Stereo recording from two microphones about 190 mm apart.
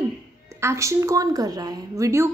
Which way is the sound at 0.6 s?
15° right (ahead or behind).